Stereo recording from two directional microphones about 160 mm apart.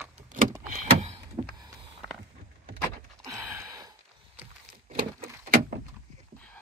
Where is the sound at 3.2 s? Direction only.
20° right (ahead or behind).